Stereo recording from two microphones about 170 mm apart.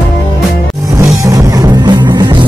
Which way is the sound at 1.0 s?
20° right (ahead or behind).